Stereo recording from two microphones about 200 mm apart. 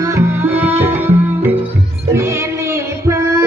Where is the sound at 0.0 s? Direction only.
15° right (ahead or behind).